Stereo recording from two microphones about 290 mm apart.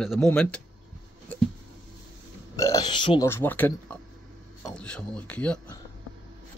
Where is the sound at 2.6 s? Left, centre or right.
Centre.